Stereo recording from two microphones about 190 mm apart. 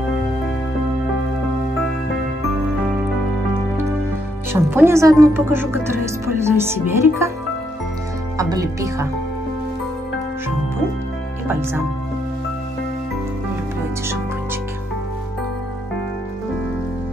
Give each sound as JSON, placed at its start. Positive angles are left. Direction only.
{"t": 4.5, "sound": "speech", "side_deg": -10}
{"t": 8.4, "sound": "speech", "side_deg": -20}